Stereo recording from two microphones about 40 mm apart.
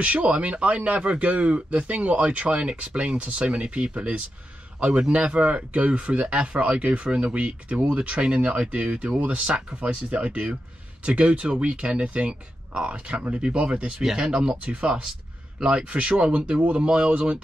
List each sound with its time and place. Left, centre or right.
0.0 s speech: right